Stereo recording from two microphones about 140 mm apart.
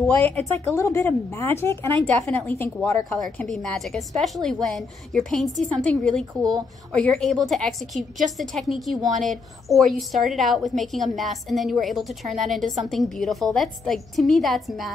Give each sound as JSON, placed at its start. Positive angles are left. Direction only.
{"t": 0.1, "sound": "a woman's voice", "side_deg": 10}